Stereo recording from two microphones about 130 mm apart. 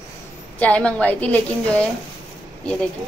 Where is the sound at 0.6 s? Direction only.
10° left (ahead or behind).